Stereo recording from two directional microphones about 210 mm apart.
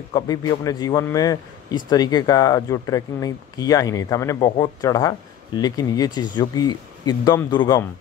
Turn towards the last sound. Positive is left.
turn(degrees=20)  # may be behind; listen again after turning